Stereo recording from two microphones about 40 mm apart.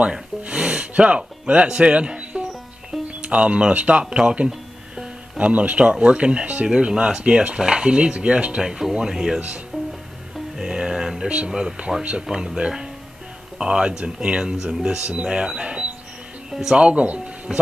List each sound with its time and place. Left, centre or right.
0.5 s music: right
3.2 s speech: right
5.4 s speech: right
8.6 s speech: centre
9.7 s music: centre
11.2 s speech: right
11.5 s speech: centre
12.0 s speech: right
12.3 s speech: centre